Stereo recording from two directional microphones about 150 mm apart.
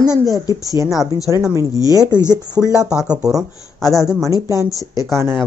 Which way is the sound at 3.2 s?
25° right (ahead or behind).